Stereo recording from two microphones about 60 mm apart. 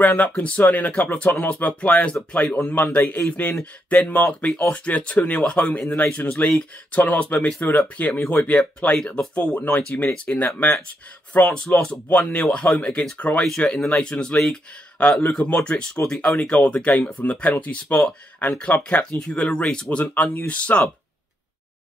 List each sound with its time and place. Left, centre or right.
0.0 s a man's voice: left
18.5 s speech: centre